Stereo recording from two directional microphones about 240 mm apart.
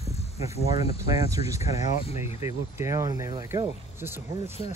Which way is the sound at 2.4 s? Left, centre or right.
Centre.